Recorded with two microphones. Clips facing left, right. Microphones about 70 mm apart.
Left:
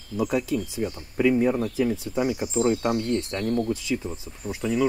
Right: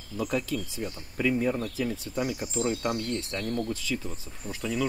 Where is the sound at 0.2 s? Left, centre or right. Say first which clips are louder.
Left 5 dB; centre.